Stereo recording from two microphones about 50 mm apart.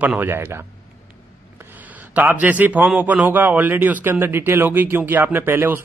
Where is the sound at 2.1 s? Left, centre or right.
Right.